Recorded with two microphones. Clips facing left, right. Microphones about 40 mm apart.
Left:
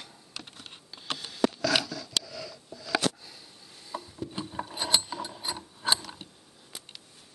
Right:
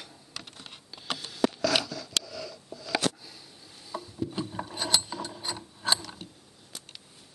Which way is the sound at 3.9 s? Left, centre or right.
Centre.